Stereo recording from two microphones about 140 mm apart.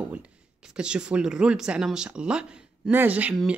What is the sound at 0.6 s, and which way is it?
Speech, 5° right (ahead or behind).